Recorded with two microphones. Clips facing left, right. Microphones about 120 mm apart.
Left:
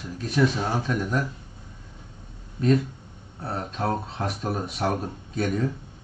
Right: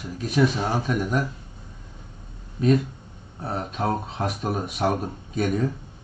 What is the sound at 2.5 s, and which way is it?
Speech, 15° right (ahead or behind).